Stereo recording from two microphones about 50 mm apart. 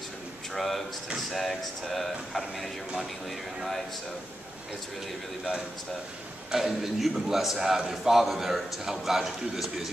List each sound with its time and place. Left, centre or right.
0.6 s a man's voice: centre
6.5 s a man's voice: centre